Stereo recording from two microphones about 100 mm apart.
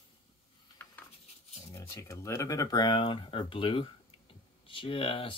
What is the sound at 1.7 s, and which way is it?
Speech, 30° left (ahead or behind).